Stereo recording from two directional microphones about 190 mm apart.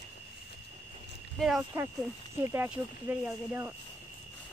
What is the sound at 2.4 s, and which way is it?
Speech, 10° right (ahead or behind).